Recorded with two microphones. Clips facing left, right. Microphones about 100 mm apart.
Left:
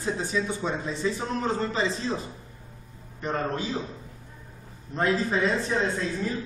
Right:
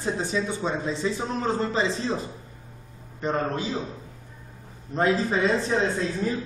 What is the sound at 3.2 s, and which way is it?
Speech, 25° right (ahead or behind).